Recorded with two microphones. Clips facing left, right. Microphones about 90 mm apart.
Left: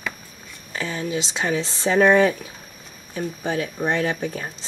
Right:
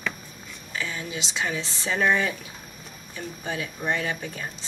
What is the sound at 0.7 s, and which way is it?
Speech, 35° left (ahead or behind).